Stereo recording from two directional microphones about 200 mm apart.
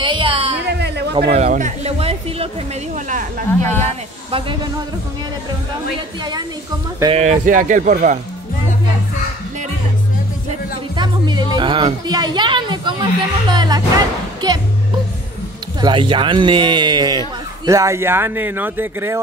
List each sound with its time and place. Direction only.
0.0 s a sound: 25° right (ahead or behind)
0.7 s a sound: 55° right (ahead or behind)
1.3 s a woman's voice: 35° right (ahead or behind)
3.8 s speech: 25° right (ahead or behind)
7.2 s speech: 40° right (ahead or behind)
11.0 s a woman's voice: 20° right (ahead or behind)
15.8 s a woman's voice: 25° right (ahead or behind)